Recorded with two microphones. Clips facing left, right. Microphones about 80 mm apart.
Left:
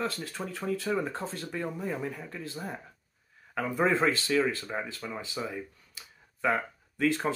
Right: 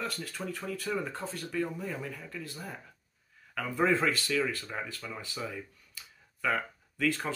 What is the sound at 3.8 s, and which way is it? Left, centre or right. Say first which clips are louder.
Speech: left 1 dB; left.